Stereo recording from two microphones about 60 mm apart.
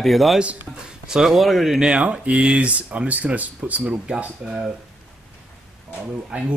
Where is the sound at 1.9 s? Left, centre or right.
Centre.